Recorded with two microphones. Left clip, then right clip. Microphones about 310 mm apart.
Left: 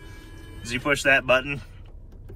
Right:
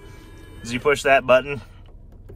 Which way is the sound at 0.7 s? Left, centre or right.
Centre.